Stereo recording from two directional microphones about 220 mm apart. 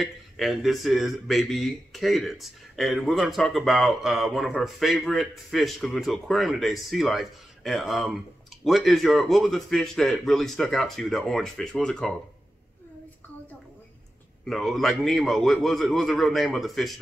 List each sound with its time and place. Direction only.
0.0 s speech: centre (ahead or behind)
14.4 s speech: centre (ahead or behind)